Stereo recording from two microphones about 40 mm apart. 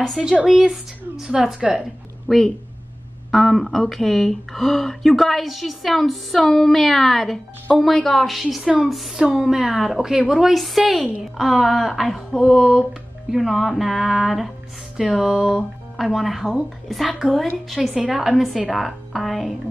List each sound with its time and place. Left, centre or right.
0.5 s a woman's voice: centre
2.2 s a woman's voice: centre
15.1 s speech: centre
15.5 s speech: centre
17.9 s speech: centre